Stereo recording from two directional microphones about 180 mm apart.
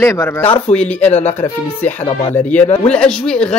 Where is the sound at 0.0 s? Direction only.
15° left (ahead or behind).